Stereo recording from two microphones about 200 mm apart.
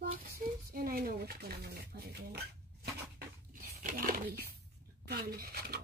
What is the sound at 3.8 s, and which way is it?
Speech, 45° right (ahead or behind).